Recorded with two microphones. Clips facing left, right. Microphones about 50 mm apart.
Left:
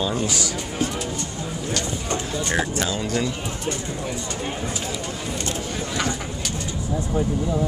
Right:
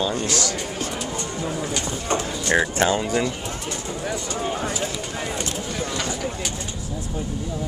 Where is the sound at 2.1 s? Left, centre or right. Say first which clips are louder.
Right 4 dB; right.